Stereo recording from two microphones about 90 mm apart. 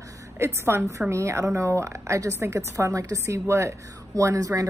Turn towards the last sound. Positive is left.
turn(degrees=-40)  # may be behind; listen again after turning